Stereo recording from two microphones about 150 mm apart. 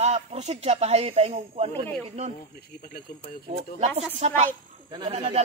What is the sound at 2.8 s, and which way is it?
Speech, 85° left.